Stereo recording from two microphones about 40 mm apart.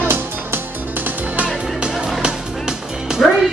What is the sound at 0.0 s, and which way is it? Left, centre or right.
Music, right.